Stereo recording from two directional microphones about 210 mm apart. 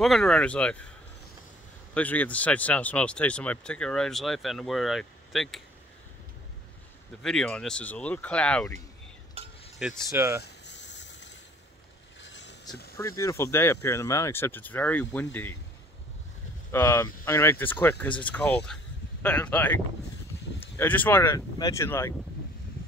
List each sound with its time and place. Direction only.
0.0 s speech: centre (ahead or behind)
2.0 s speech: 5° left (ahead or behind)
7.2 s speech: 5° left (ahead or behind)
9.4 s stir: 30° right (ahead or behind)
9.8 s speech: 5° right (ahead or behind)
10.0 s speech: 15° right (ahead or behind)
10.4 s a sound: 55° left (ahead or behind)
12.2 s vehicle: 60° left (ahead or behind)
12.9 s speech: 15° left (ahead or behind)
16.7 s speech: 10° left (ahead or behind)